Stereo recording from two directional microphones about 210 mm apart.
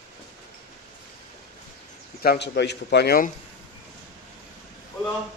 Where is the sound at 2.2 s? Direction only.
50° left (ahead or behind).